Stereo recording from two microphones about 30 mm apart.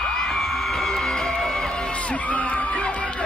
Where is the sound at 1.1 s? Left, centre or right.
Left.